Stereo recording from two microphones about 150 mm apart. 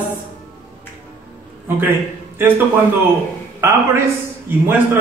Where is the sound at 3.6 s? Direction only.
20° right (ahead or behind).